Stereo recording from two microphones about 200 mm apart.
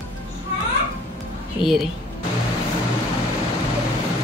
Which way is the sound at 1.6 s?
25° left (ahead or behind).